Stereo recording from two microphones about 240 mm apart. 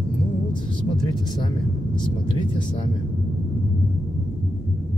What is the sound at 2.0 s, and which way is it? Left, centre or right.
Speech, centre.